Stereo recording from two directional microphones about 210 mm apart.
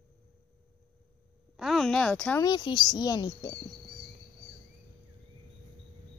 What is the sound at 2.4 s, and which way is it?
Speech, 20° left (ahead or behind).